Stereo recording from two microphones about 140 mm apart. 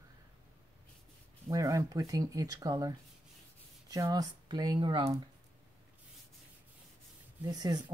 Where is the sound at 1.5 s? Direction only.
25° right (ahead or behind).